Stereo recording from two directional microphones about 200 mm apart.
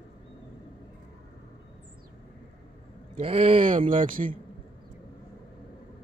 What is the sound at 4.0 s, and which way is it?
Speech, 40° right (ahead or behind).